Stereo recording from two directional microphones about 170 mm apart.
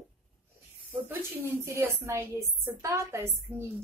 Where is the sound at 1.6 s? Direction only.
15° right (ahead or behind).